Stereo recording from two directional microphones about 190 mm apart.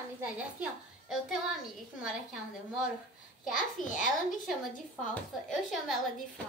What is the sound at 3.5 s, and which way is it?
Speech, 45° left (ahead or behind).